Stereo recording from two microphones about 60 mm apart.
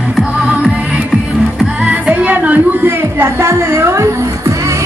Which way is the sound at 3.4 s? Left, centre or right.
Right.